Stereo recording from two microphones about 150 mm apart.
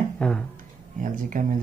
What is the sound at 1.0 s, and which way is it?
Speech, 60° right (ahead or behind).